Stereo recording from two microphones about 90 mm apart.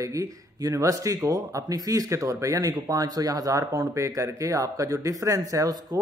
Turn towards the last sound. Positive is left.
turn(degrees=-40)  # may be behind; listen again after turning